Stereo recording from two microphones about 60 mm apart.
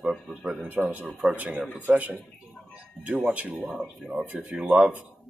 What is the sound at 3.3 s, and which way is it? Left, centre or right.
Speech, right.